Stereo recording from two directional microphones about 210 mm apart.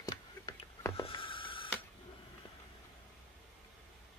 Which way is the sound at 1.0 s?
25° left (ahead or behind).